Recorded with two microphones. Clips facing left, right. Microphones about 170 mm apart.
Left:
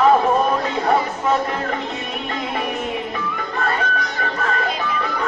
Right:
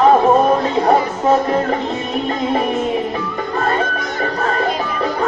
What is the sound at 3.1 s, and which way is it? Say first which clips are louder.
Music: right 4 dB; 30° right (ahead or behind).